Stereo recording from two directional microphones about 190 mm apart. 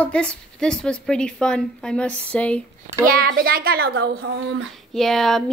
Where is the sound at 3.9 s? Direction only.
65° right (ahead or behind).